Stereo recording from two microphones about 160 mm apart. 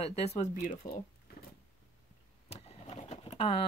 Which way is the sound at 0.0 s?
40° left (ahead or behind).